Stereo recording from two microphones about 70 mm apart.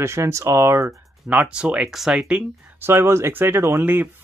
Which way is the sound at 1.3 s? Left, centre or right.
Centre.